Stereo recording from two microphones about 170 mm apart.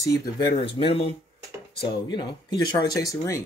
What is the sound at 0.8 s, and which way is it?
Speech, 35° left (ahead or behind).